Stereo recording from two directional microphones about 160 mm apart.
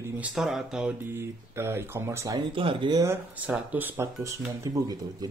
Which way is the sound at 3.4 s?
10° right (ahead or behind).